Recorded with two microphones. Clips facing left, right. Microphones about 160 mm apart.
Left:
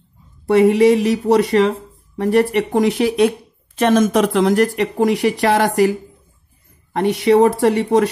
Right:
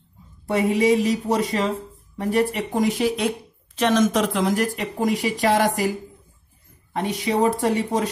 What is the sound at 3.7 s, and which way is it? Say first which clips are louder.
Speech: left 5 dB; 50° left (ahead or behind).